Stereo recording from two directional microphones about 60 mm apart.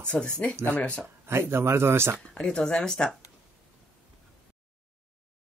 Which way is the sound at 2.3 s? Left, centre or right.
Centre.